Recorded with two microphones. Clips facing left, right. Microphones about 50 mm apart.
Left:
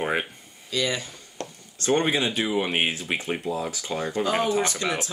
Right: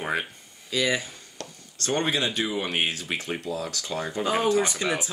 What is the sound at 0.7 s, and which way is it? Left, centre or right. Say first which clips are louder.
Speech: right 1 dB; centre.